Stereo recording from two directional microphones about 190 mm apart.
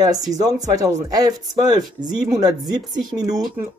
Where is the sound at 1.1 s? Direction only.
20° right (ahead or behind).